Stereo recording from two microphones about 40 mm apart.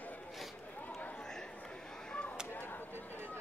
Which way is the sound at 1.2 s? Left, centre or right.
Centre.